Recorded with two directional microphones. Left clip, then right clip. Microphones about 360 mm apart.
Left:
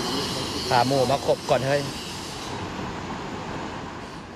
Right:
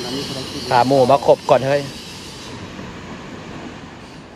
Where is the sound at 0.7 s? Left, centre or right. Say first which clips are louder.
Right 8 dB; centre.